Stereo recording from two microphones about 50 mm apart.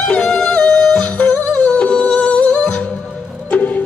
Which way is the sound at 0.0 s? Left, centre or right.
Centre.